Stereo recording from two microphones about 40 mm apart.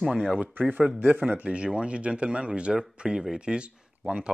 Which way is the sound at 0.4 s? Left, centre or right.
Right.